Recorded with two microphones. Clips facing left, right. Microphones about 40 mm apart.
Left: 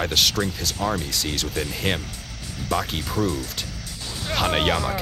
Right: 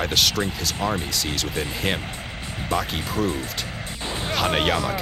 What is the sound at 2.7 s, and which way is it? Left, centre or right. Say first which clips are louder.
Speech: even; right.